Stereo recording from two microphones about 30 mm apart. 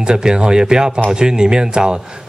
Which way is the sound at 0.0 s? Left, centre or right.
Right.